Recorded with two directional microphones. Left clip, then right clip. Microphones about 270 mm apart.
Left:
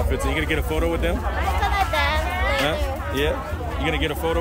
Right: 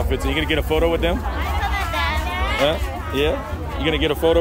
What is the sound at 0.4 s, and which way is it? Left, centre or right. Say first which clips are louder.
Speech: right 7 dB; centre.